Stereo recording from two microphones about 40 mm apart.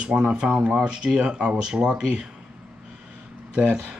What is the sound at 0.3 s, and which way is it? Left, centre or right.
Speech, right.